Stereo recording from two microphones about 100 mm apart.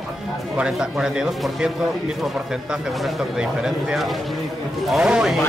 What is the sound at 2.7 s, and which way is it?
Speech, 5° right (ahead or behind).